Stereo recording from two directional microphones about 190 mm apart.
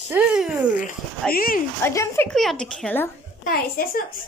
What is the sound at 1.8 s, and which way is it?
Speech, 15° left (ahead or behind).